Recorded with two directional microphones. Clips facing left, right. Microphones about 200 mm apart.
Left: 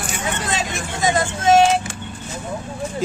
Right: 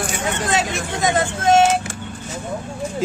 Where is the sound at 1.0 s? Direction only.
55° right (ahead or behind).